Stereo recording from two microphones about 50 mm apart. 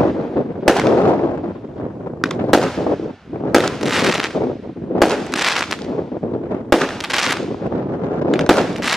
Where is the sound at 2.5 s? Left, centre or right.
Centre.